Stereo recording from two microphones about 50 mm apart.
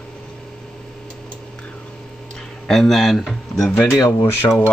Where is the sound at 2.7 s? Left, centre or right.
Centre.